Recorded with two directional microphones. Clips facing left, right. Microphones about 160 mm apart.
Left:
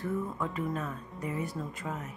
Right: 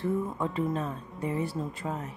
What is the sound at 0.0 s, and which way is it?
Speech, 30° right (ahead or behind).